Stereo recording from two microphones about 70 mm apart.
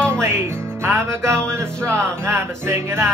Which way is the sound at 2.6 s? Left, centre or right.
Right.